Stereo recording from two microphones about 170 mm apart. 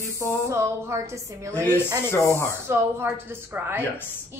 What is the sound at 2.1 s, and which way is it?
Speech, 15° left (ahead or behind).